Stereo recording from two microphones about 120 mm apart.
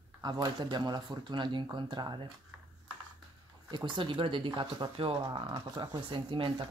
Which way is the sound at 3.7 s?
40° right (ahead or behind).